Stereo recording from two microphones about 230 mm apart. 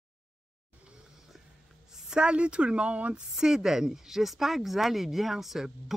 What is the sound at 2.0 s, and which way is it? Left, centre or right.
Speech, centre.